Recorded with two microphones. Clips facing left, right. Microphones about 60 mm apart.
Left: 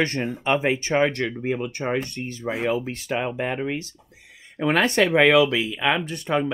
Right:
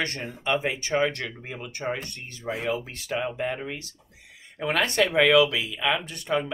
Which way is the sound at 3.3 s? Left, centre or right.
Left.